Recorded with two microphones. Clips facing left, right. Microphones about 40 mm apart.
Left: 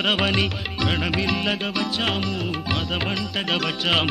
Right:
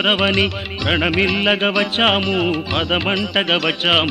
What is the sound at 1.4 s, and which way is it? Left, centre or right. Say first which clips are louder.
Music: right 8 dB; right.